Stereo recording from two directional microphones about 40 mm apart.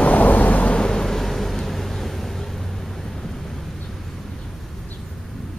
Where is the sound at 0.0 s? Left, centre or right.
Left.